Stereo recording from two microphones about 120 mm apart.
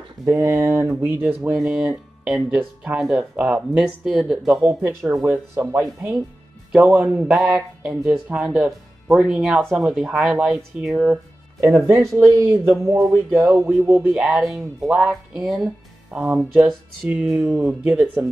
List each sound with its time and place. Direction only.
0.2 s speech: 20° right (ahead or behind); by 4.7 s 5° right (ahead or behind)
4.8 s speech: 25° right (ahead or behind)
6.7 s speech: 10° right (ahead or behind)
11.9 s speech: 25° right (ahead or behind)
14.1 s speech: centre (ahead or behind)